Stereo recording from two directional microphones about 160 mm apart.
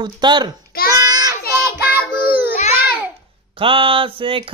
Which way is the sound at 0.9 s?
25° right (ahead or behind).